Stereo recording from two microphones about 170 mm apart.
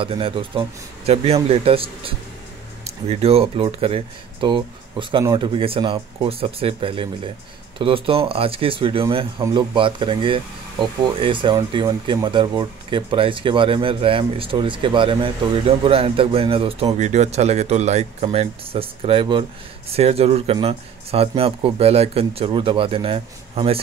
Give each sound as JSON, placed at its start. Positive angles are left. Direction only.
{"t": 0.0, "sound": "speech", "side_deg": -30}